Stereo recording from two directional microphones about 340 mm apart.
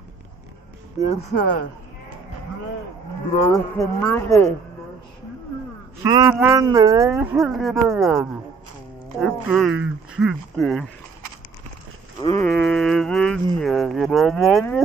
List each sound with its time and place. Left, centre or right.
1.3 s speech: left
3.3 s speech: centre
6.0 s speech: centre
12.2 s speech: centre